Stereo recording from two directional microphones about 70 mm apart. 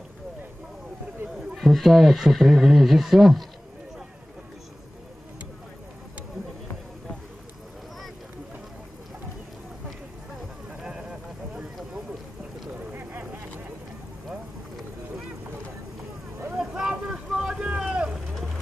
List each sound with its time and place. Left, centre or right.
1.3 s speech: centre
10.8 s a sound: centre
12.9 s vehicle: right
16.5 s vehicle: centre